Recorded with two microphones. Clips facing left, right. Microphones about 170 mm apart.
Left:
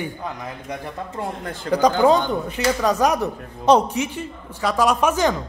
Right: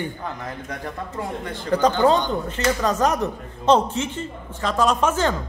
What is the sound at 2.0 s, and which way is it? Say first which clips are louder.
A man's voice: left 2 dB; 10° left (ahead or behind).